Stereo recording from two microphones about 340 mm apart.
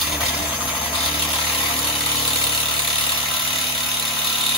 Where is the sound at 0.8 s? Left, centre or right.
Centre.